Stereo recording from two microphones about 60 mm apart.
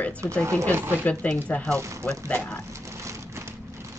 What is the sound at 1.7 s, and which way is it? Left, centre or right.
Speech, right.